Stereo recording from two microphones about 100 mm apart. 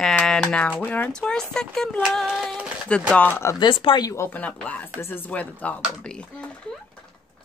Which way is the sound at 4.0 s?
35° left (ahead or behind).